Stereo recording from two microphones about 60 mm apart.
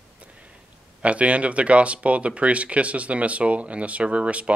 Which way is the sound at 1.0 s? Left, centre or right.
Right.